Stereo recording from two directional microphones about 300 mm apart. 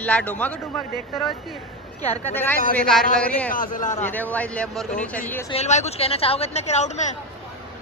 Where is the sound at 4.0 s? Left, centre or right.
Centre.